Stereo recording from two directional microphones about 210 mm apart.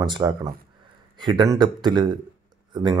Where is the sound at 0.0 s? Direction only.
20° right (ahead or behind).